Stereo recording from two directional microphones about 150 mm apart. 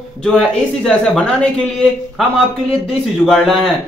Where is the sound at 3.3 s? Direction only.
Centre (ahead or behind).